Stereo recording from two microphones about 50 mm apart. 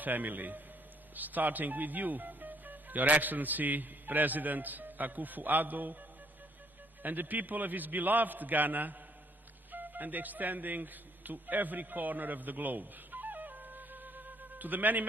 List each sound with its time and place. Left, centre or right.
0.0 s speech: right
7.0 s speech: right
9.7 s music: right